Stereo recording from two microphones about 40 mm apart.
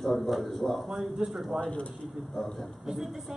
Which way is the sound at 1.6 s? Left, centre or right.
Left.